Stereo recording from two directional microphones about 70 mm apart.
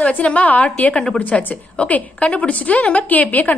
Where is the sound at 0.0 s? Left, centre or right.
Centre.